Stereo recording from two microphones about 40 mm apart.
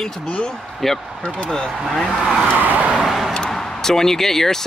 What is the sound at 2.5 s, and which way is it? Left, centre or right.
Vehicle, right.